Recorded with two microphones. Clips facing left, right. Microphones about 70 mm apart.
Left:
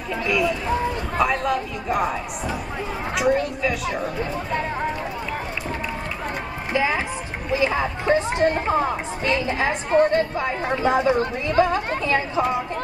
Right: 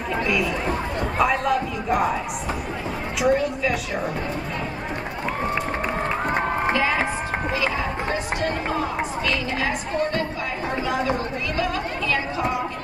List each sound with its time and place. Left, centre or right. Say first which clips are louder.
0.3 s a man's voice: left 4 dB; centre
3.2 s a man's voice: even; centre
7.5 s speech: left 7 dB; left